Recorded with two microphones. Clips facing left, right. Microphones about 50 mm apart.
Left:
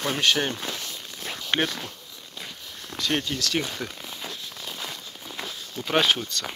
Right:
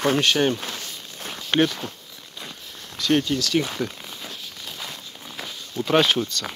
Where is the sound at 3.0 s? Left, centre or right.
Left.